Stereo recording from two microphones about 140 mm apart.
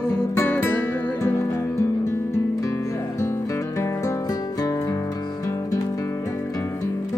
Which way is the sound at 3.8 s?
20° left (ahead or behind).